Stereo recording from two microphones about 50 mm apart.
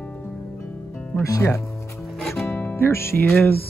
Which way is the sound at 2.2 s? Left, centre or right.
Centre.